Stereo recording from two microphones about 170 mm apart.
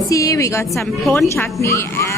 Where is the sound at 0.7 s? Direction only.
Centre (ahead or behind).